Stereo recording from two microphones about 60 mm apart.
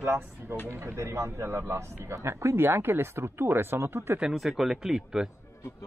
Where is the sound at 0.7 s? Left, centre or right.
Right.